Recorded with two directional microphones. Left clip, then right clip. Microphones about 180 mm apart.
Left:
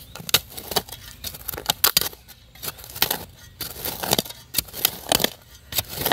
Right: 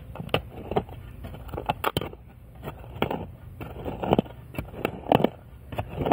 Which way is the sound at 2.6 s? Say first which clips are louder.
Left 4 dB; 20° left (ahead or behind).